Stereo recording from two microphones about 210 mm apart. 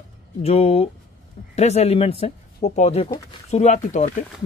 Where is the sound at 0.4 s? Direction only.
30° left (ahead or behind).